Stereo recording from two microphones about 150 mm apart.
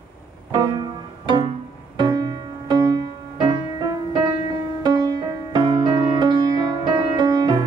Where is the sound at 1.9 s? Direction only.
25° right (ahead or behind).